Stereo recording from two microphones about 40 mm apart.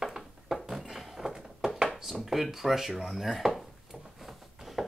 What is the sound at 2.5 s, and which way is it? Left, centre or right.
Speech, centre.